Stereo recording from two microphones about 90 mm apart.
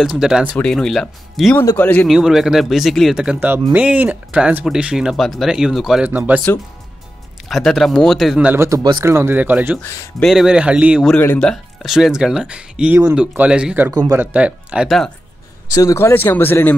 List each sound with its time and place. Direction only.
0.0 s speech: 5° right (ahead or behind)
0.6 s speech: 5° left (ahead or behind)
1.6 s speech: 30° left (ahead or behind)
2.0 s speech: 5° right (ahead or behind)
3.2 s speech: 10° right (ahead or behind)
6.0 s speech: 20° right (ahead or behind)
7.4 s speech: centre (ahead or behind)
8.5 s a man's voice: 35° right (ahead or behind); by 9.8 s 20° right (ahead or behind)
10.2 s speech: 5° right (ahead or behind)
11.3 s speech: 10° left (ahead or behind)
11.8 s speech: 5° right (ahead or behind)
15.7 s a man's voice: 40° left (ahead or behind)
16.0 s speech: 25° left (ahead or behind)